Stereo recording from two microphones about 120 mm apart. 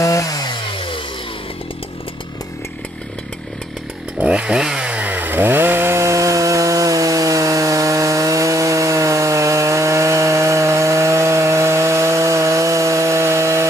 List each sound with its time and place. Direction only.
0.0 s chainsaw: 30° left (ahead or behind); by 1.0 s 45° left (ahead or behind)
4.2 s chainsaw: 10° right (ahead or behind); by 13.7 s 25° right (ahead or behind)